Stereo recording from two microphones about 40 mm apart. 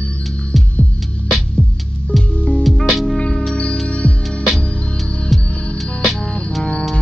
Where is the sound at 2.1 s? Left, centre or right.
Centre.